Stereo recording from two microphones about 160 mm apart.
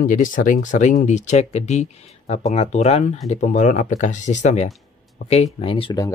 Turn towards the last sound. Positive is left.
turn(degrees=35)  # may be behind; listen again after turning